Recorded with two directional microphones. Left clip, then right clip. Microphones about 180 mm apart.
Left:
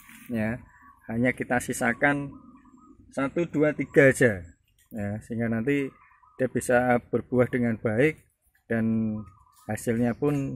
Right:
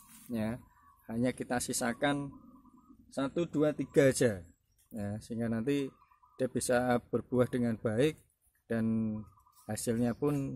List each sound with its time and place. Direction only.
0.0 s a sound: 5° left (ahead or behind)
1.0 s speech: 5° left (ahead or behind)
1.5 s speech: 15° left (ahead or behind)
2.0 s speech: 5° left (ahead or behind)
4.2 s speech: 15° left (ahead or behind)